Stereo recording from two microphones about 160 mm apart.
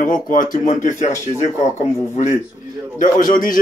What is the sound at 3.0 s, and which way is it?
Speech, 60° left (ahead or behind).